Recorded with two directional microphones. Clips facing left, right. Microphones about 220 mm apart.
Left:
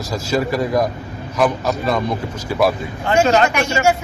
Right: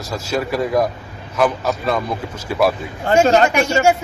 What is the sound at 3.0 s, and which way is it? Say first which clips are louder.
Speech: right 2 dB; 40° right (ahead or behind).